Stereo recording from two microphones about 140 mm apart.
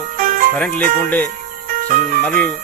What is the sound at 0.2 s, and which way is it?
Music, 65° right (ahead or behind).